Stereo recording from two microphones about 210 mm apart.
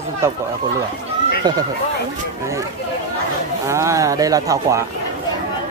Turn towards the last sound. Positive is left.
turn(degrees=-15)  # may be behind; listen again after turning